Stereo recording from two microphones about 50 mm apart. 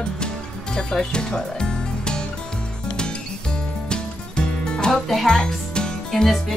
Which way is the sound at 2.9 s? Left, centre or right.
Centre.